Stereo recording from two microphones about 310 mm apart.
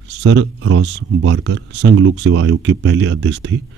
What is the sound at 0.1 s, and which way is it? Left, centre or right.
Speech, right.